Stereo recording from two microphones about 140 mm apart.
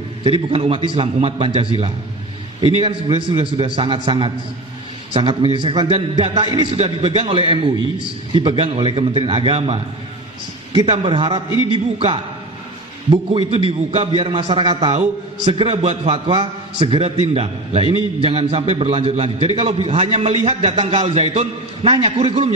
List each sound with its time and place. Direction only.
0.2 s a man's voice: 40° right (ahead or behind)
6.2 s a man's voice: 45° right (ahead or behind)
10.9 s a man's voice: 40° right (ahead or behind)
13.5 s a man's voice: 40° right (ahead or behind)